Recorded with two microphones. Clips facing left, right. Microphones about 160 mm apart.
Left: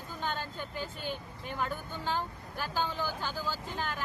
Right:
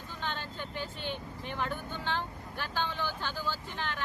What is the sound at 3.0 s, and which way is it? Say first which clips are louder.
Speech: left 1 dB; 40° left (ahead or behind).